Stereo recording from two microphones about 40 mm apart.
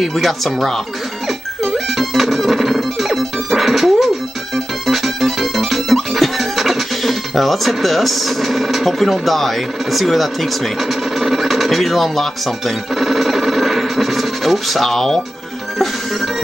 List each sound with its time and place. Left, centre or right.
0.1 s speech: centre
2.0 s music: centre